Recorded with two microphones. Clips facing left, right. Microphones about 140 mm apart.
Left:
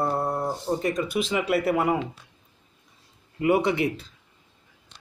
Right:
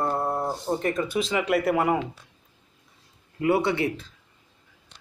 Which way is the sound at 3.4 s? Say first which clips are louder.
Left 1 dB; 15° left (ahead or behind).